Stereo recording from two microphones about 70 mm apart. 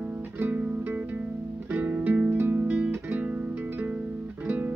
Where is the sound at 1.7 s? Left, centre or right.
Right.